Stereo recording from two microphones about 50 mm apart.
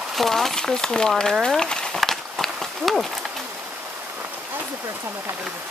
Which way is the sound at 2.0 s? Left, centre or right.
Centre.